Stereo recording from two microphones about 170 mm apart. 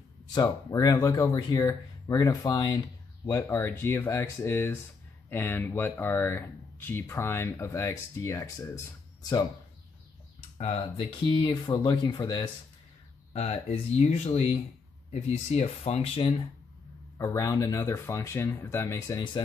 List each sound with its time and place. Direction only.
0.3 s speech: 20° left (ahead or behind)
10.6 s speech: 35° left (ahead or behind)
13.3 s speech: 35° left (ahead or behind)
17.2 s speech: 20° left (ahead or behind)